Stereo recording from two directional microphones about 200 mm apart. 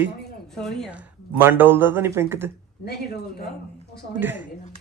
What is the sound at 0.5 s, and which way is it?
Speech, centre (ahead or behind).